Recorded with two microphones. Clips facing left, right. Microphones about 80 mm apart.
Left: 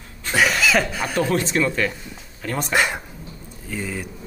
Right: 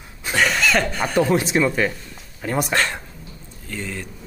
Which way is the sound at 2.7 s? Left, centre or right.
Centre.